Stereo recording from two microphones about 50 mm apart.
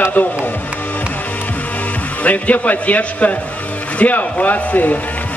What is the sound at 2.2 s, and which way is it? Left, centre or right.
A man's voice, left.